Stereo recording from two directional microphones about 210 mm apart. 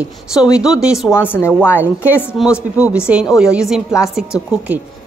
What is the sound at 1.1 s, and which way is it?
Speech, 10° left (ahead or behind).